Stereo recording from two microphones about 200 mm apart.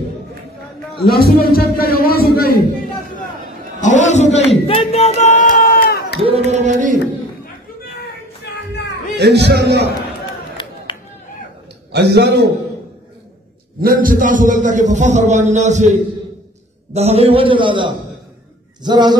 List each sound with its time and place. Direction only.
1.0 s a man's voice: 50° left (ahead or behind)
3.8 s a man's voice: 35° left (ahead or behind)
6.2 s a man's voice: 30° right (ahead or behind)
9.1 s a man's voice: 55° right (ahead or behind)
10.9 s a sound: 25° left (ahead or behind)
11.9 s a man's voice: 55° right (ahead or behind)
13.7 s a man's voice: 45° right (ahead or behind); by 19.1 s 20° right (ahead or behind)